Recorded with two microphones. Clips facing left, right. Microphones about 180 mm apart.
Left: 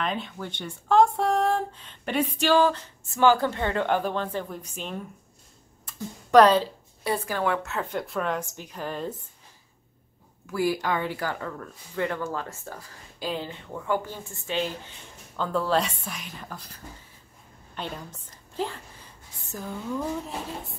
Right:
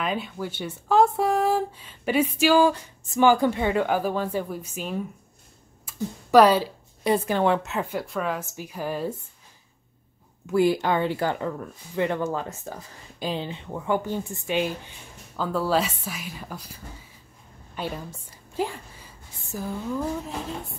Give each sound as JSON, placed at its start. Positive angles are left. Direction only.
{"t": 0.0, "sound": "a woman's voice", "side_deg": -5}
{"t": 8.0, "sound": "speech", "side_deg": 0}
{"t": 10.4, "sound": "a woman's voice", "side_deg": -25}